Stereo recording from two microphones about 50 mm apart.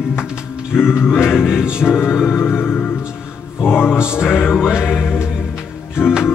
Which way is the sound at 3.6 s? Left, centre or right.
Left.